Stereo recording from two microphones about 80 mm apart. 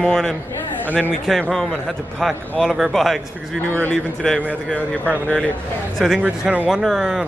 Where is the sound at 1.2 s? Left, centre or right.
Centre.